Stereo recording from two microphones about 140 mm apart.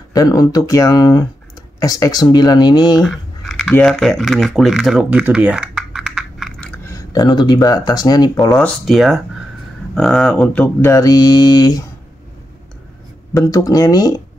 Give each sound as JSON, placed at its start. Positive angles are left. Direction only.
{"t": 0.1, "sound": "speech", "side_deg": 25}
{"t": 3.0, "sound": "a sound", "side_deg": 5}
{"t": 3.7, "sound": "speech", "side_deg": 5}
{"t": 5.2, "sound": "a sound", "side_deg": -10}
{"t": 6.8, "sound": "speech", "side_deg": 20}
{"t": 8.5, "sound": "speech", "side_deg": 0}
{"t": 10.9, "sound": "speech", "side_deg": 25}
{"t": 13.3, "sound": "speech", "side_deg": 25}